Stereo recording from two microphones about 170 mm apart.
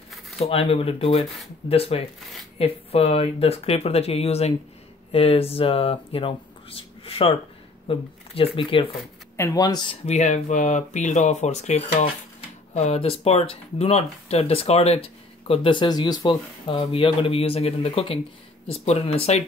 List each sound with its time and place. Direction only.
0.4 s speech: 35° left (ahead or behind)
9.4 s speech: 20° left (ahead or behind)
10.0 s speech: 40° left (ahead or behind)